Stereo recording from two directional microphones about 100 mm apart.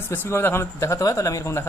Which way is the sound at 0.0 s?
25° left (ahead or behind).